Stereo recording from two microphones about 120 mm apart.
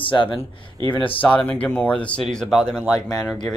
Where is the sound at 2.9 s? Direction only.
30° left (ahead or behind).